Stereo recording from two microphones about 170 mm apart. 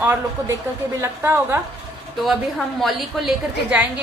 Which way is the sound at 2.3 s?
Centre (ahead or behind).